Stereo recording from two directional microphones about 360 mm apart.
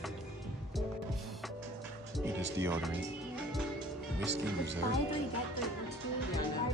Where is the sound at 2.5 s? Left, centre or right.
Centre.